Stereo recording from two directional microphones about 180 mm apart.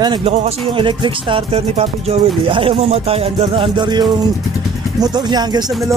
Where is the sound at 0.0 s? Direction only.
30° right (ahead or behind).